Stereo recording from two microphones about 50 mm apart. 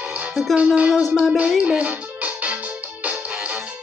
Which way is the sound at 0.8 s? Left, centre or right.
Centre.